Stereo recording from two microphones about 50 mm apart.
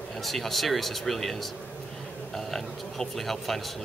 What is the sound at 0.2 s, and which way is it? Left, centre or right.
Speech, centre.